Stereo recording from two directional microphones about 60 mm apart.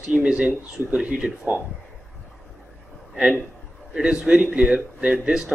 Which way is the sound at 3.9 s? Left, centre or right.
Centre.